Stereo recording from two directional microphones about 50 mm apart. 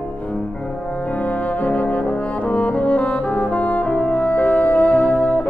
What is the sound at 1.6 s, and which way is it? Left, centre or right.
Brass instrument, left.